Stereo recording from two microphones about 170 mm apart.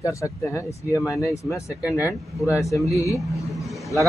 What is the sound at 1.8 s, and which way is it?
Speech, 10° right (ahead or behind).